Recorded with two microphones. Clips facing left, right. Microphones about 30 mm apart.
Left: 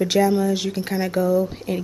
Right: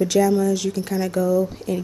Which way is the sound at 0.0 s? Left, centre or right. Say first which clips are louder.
Right 1 dB; left.